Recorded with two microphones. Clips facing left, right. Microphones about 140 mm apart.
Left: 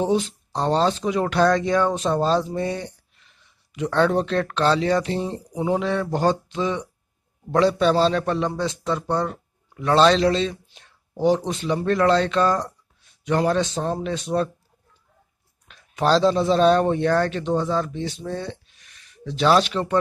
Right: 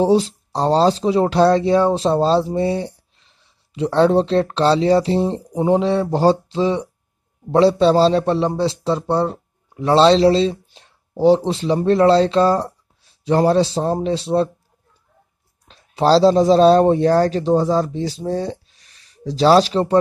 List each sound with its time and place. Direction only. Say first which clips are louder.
0.0 s a man's voice: right 6 dB; 35° right (ahead or behind)
15.7 s speech: right 5 dB; 30° right (ahead or behind)